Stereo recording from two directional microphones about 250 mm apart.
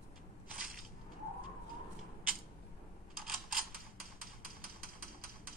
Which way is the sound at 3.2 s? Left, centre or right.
Centre.